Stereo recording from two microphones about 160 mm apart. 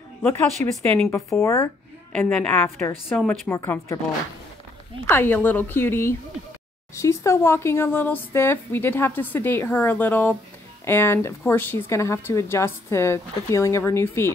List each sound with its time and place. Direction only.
0.8 s speech: 15° left (ahead or behind)
2.1 s speech: 5° left (ahead or behind)
5.0 s speech: 15° left (ahead or behind)